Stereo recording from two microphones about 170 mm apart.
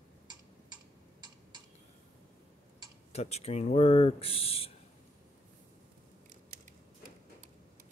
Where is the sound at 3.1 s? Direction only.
40° left (ahead or behind).